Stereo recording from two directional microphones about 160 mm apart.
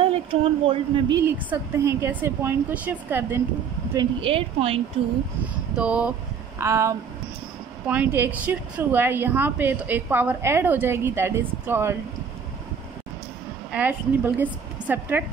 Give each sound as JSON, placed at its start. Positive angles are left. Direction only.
{"t": 0.0, "sound": "speech", "side_deg": -35}
{"t": 1.2, "sound": "a woman's voice", "side_deg": -15}
{"t": 3.9, "sound": "speech", "side_deg": -30}
{"t": 5.8, "sound": "a woman's voice", "side_deg": -5}
{"t": 6.6, "sound": "a woman's voice", "side_deg": -20}
{"t": 13.7, "sound": "a woman's voice", "side_deg": -10}